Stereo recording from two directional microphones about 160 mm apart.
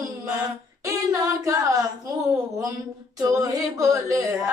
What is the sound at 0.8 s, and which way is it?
Female singing, 20° right (ahead or behind).